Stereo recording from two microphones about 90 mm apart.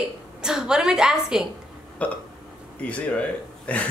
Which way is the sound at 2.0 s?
15° left (ahead or behind).